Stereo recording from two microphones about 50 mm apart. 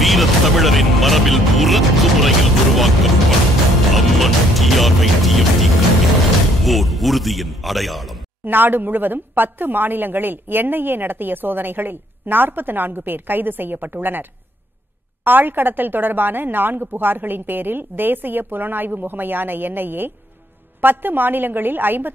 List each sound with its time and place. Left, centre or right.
0.0 s music: centre
6.6 s speech: centre
8.5 s a woman's voice: right
15.2 s a woman's voice: right